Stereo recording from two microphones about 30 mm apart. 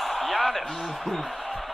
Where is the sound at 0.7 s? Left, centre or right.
Centre.